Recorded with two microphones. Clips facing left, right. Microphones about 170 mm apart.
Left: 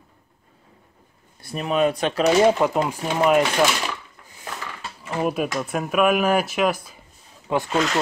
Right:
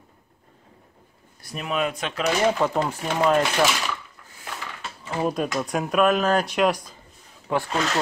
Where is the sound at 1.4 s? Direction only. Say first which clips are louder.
Left 5 dB; 35° left (ahead or behind); by 3.5 s 10° left (ahead or behind).